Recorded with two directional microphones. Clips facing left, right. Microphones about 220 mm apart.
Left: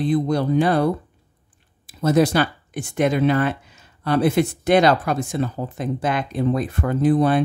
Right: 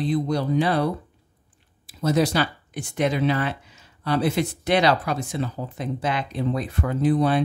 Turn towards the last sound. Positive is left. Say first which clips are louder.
# left 3 dB
turn(degrees=50)  # may be behind; listen again after turning